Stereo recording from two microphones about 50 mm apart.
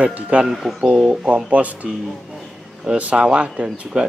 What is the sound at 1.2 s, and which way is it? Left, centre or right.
Speech, right.